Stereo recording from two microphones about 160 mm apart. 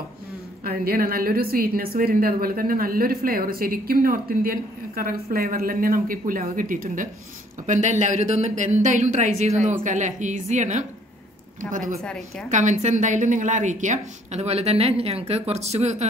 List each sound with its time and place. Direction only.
0.7 s a woman's voice: 65° right (ahead or behind); by 10.9 s 50° right (ahead or behind)
12.0 s a woman's voice: 5° left (ahead or behind)
12.4 s speech: 50° right (ahead or behind)